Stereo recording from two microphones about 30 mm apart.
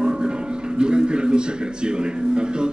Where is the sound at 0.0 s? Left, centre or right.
Right.